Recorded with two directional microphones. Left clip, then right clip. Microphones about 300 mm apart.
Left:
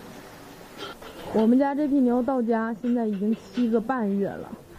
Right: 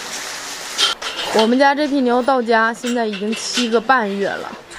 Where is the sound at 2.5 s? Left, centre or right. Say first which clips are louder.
Right 10 dB; centre.